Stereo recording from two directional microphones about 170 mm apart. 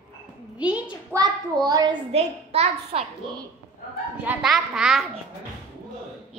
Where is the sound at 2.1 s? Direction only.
40° right (ahead or behind).